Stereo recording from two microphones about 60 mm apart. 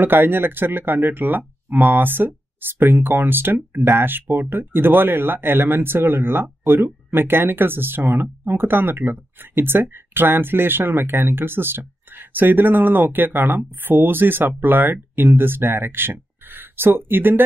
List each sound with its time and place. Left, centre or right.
0.0 s speech: right